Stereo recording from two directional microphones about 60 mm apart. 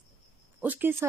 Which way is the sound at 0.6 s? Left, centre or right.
Right.